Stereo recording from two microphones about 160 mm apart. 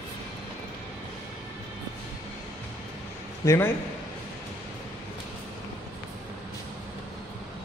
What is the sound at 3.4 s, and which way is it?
Speech, 20° left (ahead or behind).